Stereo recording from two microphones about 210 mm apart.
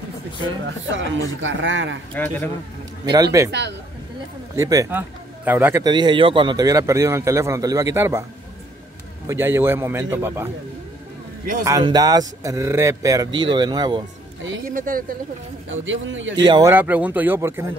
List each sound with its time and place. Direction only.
0.7 s a man's voice: 60° right (ahead or behind)
2.1 s speech: 10° left (ahead or behind)
3.1 s speech: 15° right (ahead or behind)
4.6 s speech: 15° right (ahead or behind)
9.3 s speech: 10° right (ahead or behind)
11.6 s speech: 15° right (ahead or behind)
14.7 s speech: 40° right (ahead or behind)
15.7 s a man's voice: 65° right (ahead or behind)
16.4 s speech: 20° right (ahead or behind)
16.7 s speech: 10° right (ahead or behind)